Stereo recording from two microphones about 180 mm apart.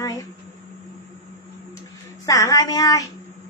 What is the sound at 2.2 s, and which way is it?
Speech, 20° left (ahead or behind).